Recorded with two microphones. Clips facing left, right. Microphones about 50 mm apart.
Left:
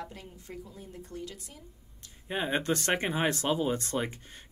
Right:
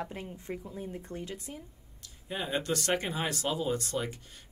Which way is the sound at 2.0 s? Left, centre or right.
Left.